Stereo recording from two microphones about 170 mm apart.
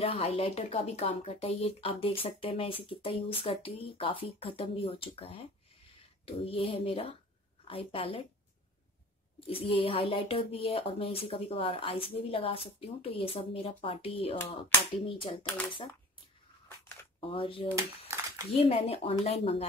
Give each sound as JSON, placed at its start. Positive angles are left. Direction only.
{"t": 0.0, "sound": "speech", "side_deg": 35}
{"t": 9.5, "sound": "speech", "side_deg": 35}
{"t": 17.3, "sound": "speech", "side_deg": 30}
{"t": 17.7, "sound": "a sound", "side_deg": -15}
{"t": 18.6, "sound": "speech", "side_deg": 35}